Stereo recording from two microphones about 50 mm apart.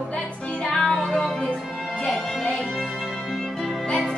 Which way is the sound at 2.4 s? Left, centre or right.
Left.